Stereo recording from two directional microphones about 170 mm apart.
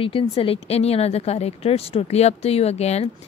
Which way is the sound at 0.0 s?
30° left (ahead or behind).